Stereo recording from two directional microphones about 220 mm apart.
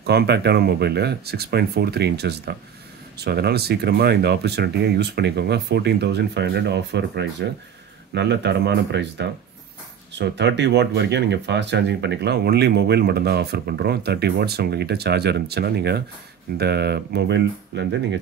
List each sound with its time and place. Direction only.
0.0 s speech: 45° right (ahead or behind)